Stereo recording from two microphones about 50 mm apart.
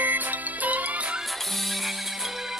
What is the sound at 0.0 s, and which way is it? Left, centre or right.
Music, right.